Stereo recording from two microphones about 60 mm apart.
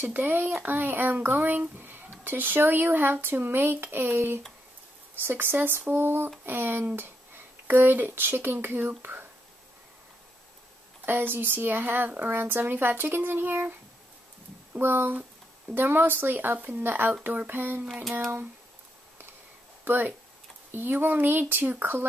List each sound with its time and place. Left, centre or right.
0.0 s speech: right
11.1 s speech: right
14.8 s speech: right
19.8 s speech: right